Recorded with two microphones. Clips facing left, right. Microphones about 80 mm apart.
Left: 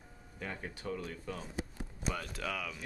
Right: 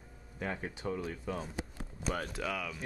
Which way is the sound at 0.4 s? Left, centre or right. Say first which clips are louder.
Right 4 dB; centre.